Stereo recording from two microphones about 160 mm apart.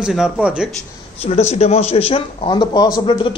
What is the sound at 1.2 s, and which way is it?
Speech, 40° left (ahead or behind).